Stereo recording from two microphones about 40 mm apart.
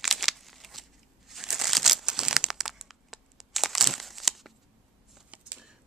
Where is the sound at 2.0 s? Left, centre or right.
Centre.